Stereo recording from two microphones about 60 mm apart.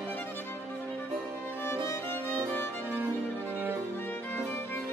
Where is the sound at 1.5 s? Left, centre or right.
Left.